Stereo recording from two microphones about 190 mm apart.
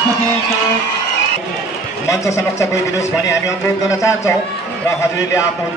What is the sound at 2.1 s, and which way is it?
Speech, 15° left (ahead or behind).